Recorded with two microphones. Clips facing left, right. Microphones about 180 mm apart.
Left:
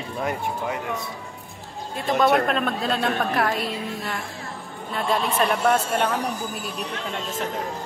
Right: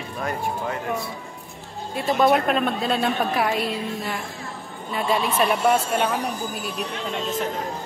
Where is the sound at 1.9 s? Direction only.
Centre (ahead or behind).